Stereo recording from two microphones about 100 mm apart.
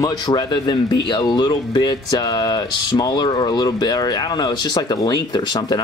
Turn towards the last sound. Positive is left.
turn(degrees=45)  # may be behind; listen again after turning